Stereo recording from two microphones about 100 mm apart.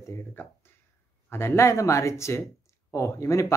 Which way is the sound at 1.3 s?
25° left (ahead or behind).